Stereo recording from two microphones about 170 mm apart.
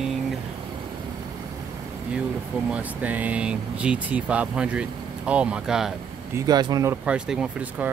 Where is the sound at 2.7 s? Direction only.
10° right (ahead or behind).